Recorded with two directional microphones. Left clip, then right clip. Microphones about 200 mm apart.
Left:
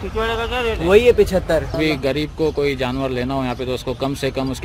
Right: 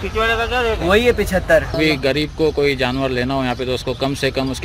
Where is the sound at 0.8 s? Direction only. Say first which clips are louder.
Left 5 dB; 55° left (ahead or behind).